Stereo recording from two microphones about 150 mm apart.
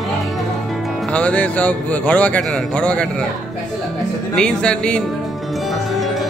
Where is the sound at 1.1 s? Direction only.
10° left (ahead or behind).